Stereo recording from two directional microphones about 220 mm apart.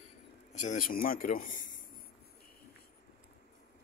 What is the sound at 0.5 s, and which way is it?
A man's voice, 35° left (ahead or behind).